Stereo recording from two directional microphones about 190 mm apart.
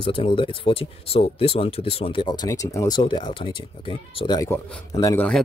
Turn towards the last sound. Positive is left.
turn(degrees=15)  # may be behind; listen again after turning